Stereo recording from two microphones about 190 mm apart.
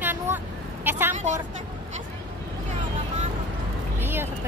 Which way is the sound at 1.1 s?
40° right (ahead or behind).